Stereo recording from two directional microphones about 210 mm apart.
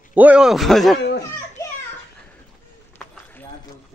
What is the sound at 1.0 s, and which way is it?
Children playing, 55° left (ahead or behind).